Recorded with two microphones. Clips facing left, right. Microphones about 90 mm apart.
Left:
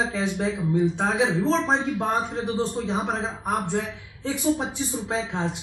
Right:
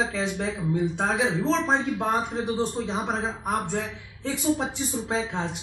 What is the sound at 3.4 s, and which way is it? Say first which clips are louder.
A man's voice: left 4 dB; 20° left (ahead or behind).